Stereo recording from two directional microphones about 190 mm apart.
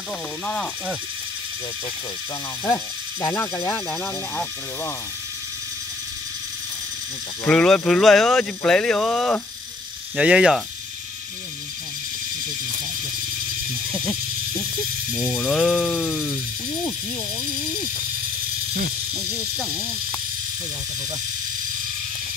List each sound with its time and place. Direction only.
0.5 s speech: 5° left (ahead or behind)
2.6 s speech: 10° left (ahead or behind)
7.4 s speech: 5° left (ahead or behind)
13.9 s a sound: 20° left (ahead or behind)
15.1 s speech: centre (ahead or behind)
19.1 s speech: centre (ahead or behind)